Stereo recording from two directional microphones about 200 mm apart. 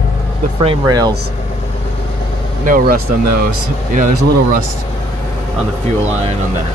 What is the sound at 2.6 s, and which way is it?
Speech, 45° right (ahead or behind).